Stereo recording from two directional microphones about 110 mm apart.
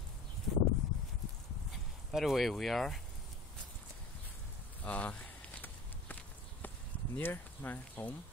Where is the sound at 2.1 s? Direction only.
Centre (ahead or behind).